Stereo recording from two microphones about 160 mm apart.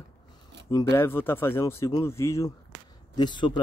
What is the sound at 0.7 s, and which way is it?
Speech, 20° left (ahead or behind).